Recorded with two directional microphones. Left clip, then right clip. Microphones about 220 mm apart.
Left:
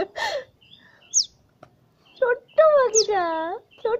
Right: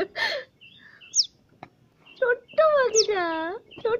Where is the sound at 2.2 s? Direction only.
10° right (ahead or behind).